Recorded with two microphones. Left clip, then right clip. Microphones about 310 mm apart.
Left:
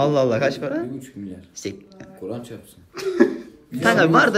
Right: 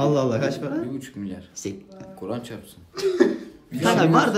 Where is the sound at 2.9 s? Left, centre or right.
Centre.